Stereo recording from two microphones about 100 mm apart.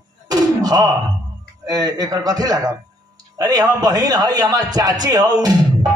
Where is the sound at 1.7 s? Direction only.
40° right (ahead or behind).